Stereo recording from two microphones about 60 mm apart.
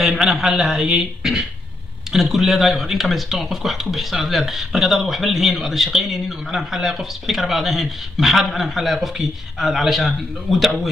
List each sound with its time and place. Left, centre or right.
0.0 s a man's voice: centre